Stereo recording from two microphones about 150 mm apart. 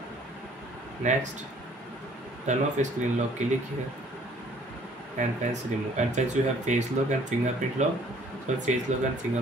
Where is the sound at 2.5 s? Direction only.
50° right (ahead or behind).